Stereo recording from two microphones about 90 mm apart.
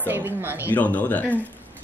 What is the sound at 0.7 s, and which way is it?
Speech, 15° left (ahead or behind).